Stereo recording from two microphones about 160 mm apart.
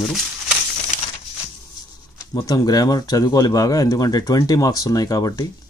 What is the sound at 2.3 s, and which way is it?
Speech, 25° left (ahead or behind).